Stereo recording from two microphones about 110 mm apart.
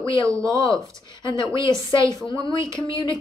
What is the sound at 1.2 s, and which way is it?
Speech, 45° left (ahead or behind).